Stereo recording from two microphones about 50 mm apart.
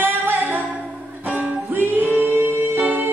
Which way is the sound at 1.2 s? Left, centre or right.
Right.